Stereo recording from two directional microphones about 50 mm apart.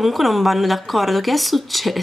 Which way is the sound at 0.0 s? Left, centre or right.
Centre.